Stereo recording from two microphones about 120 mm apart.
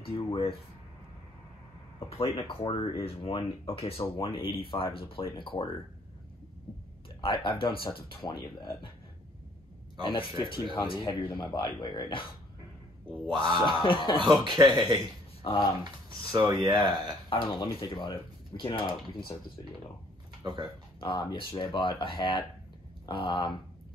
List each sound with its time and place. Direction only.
0.0 s speech: 50° left (ahead or behind)
2.3 s speech: 50° left (ahead or behind)
7.2 s speech: 45° left (ahead or behind)
10.5 s speech: 45° left (ahead or behind)
13.3 s speech: 40° right (ahead or behind)
13.6 s speech: 45° left (ahead or behind)
14.4 s speech: 40° right (ahead or behind)
15.4 s speech: 45° left (ahead or behind)
15.8 s speech: 35° right (ahead or behind)
17.3 s speech: 45° left (ahead or behind)
20.4 s speech: 40° right (ahead or behind)
21.0 s speech: 45° left (ahead or behind)